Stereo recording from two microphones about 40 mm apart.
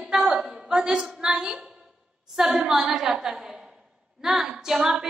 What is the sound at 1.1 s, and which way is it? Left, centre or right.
A woman's voice, centre.